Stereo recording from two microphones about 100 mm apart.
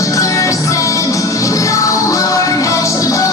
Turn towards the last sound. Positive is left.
turn(degrees=35)  # may be behind; listen again after turning